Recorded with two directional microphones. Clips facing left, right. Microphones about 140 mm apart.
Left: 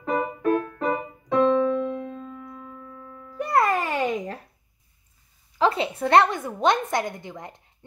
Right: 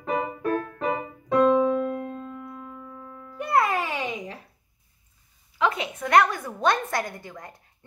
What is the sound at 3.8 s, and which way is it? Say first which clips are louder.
Babbling: left 5 dB; 45° left (ahead or behind).